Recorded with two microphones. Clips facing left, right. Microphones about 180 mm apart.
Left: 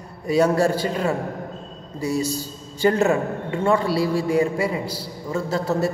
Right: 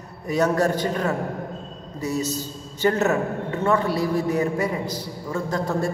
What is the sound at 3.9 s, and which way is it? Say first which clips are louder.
A man's voice: left 2 dB; 10° left (ahead or behind).